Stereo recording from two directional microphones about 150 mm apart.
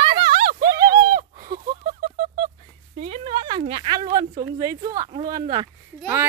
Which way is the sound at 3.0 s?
45° right (ahead or behind).